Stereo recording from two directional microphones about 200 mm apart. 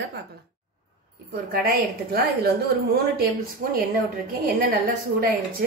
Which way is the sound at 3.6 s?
45° right (ahead or behind).